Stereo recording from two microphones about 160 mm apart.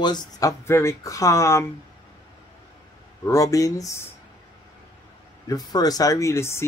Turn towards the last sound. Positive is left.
turn(degrees=15)  # may be behind; listen again after turning